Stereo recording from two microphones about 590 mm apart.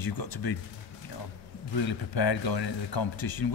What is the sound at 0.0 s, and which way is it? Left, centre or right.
Speech, left.